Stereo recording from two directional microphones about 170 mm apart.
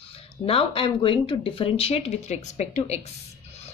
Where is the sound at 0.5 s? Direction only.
30° left (ahead or behind).